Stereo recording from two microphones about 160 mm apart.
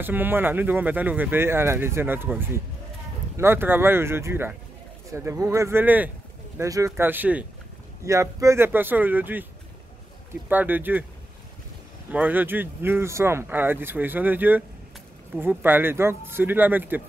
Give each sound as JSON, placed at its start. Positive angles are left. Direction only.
{"t": 0.0, "sound": "speech", "side_deg": -10}
{"t": 10.5, "sound": "speech", "side_deg": -10}
{"t": 12.1, "sound": "speech", "side_deg": -10}